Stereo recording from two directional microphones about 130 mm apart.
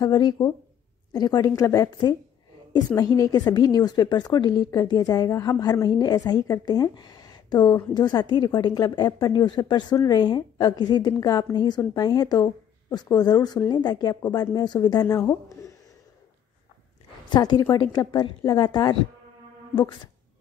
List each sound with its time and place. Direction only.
0.0 s a woman's voice: 35° left (ahead or behind)
17.3 s a woman's voice: 30° left (ahead or behind)